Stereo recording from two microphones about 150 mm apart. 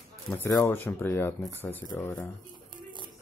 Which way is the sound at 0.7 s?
15° left (ahead or behind).